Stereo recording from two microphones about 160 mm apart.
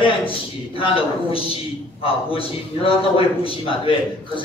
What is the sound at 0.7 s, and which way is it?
A man's voice, 35° left (ahead or behind).